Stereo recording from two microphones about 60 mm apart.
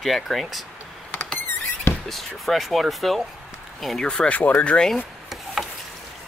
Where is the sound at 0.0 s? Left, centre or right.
Centre.